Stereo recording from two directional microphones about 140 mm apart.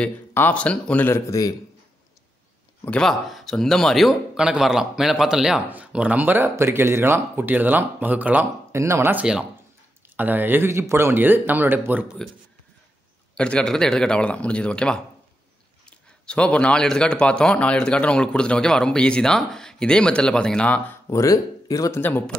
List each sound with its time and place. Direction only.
0.0 s a man's voice: 10° left (ahead or behind)
2.8 s speech: 5° left (ahead or behind); by 12.2 s 10° right (ahead or behind)
13.3 s a man's voice: 5° left (ahead or behind)
21.1 s speech: 25° left (ahead or behind)
22.0 s a man's voice: 10° left (ahead or behind)